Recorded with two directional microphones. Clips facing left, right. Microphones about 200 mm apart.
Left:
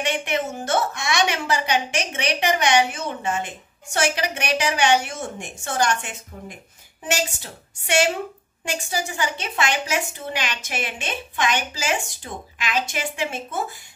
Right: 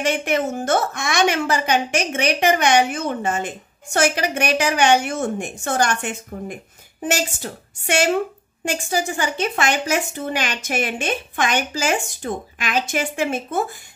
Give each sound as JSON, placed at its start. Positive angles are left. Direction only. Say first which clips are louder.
{"t": 0.0, "sound": "a woman's voice", "louder": "right 4 dB", "side_deg": -45}